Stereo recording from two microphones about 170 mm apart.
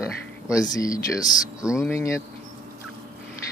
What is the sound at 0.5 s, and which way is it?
Speech, 20° left (ahead or behind).